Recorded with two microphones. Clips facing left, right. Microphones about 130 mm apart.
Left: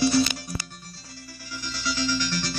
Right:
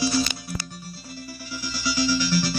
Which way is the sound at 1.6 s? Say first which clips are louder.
Right 4 dB; 5° right (ahead or behind).